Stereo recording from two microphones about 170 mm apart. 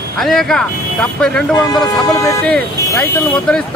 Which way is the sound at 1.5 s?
20° left (ahead or behind).